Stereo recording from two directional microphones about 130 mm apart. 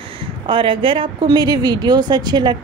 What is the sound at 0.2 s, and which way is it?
A woman's voice, 40° right (ahead or behind).